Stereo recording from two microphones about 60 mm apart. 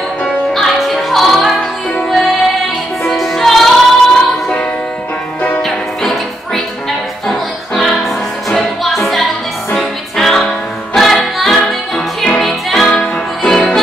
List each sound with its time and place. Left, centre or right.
0.5 s music: centre
13.4 s music: centre